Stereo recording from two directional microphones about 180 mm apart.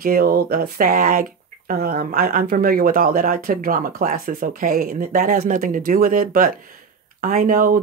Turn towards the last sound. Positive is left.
turn(degrees=-50)  # may be behind; listen again after turning